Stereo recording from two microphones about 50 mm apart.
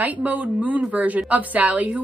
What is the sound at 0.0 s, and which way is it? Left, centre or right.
A woman's voice, right.